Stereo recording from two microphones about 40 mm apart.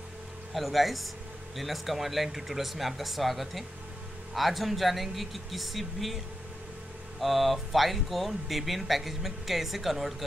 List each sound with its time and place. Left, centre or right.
0.6 s speech: centre
7.2 s speech: centre